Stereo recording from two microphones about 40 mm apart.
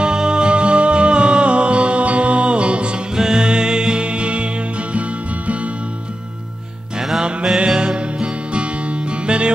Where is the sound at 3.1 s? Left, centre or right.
Centre.